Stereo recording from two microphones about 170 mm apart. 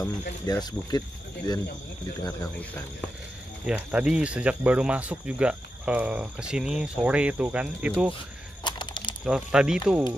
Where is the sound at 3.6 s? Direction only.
5° right (ahead or behind).